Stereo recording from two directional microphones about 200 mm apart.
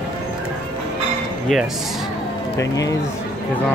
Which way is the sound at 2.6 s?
15° left (ahead or behind).